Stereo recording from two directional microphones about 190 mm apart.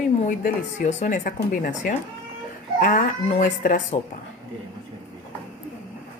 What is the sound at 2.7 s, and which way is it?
A woman's voice, 45° left (ahead or behind).